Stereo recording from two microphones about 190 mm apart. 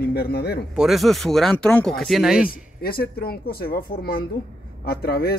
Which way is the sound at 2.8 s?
55° left (ahead or behind).